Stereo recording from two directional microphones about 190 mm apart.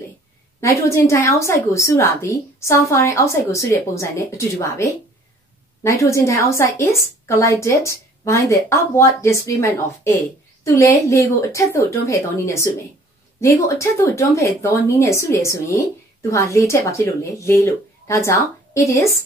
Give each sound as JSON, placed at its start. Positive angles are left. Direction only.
{"t": 0.6, "sound": "a woman's voice", "side_deg": 15}